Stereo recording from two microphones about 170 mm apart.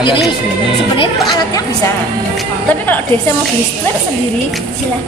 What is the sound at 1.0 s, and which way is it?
Speech, 25° left (ahead or behind).